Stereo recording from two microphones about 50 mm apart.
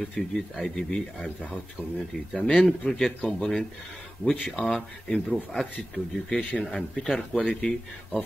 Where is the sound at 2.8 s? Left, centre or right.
Left.